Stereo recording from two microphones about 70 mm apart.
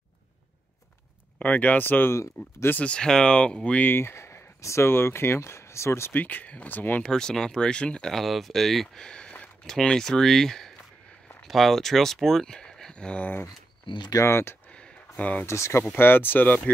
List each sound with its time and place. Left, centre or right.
1.4 s speech: left
2.4 s speech: left
2.8 s speech: centre
3.8 s speech: left
6.1 s speech: left
7.0 s speech: centre
8.1 s speech: centre
14.1 s speech: left
14.7 s a sound: centre
15.4 s speech: left
16.0 s speech: left